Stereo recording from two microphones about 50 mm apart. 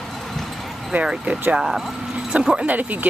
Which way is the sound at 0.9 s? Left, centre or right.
Right.